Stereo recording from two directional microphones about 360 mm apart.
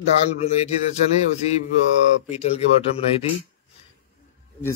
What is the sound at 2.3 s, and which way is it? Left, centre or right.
Speech, centre.